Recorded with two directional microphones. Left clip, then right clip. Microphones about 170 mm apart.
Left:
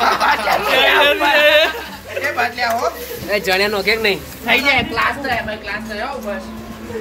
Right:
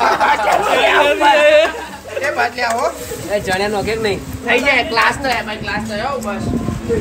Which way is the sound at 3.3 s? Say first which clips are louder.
Left 1 dB; 45° left (ahead or behind).